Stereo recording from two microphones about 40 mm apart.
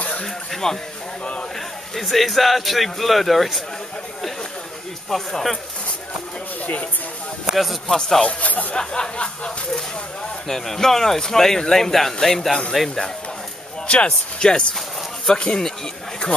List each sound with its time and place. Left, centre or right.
0.2 s a sound: centre
2.0 s speech: centre
5.1 s speech: centre
6.6 s speech: left
7.5 s speech: centre
8.2 s speech: left
8.7 s a sound: centre
10.5 s speech: centre
13.8 s a sound: left